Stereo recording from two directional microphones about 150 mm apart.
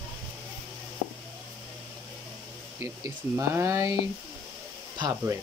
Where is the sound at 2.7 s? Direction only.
15° right (ahead or behind).